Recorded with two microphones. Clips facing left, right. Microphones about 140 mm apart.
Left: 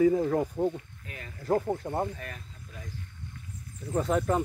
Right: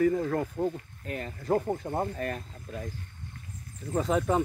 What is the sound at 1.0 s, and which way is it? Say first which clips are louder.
Speech: right 9 dB; 40° right (ahead or behind).